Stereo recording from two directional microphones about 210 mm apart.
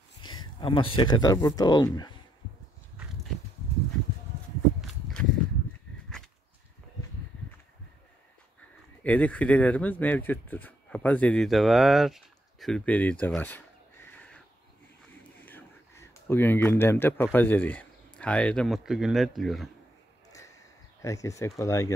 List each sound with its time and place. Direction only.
0.2 s speech: 20° left (ahead or behind)
9.0 s speech: 5° left (ahead or behind)
14.0 s crow: 5° left (ahead or behind)
15.4 s speech: 10° left (ahead or behind)
21.0 s speech: 15° left (ahead or behind)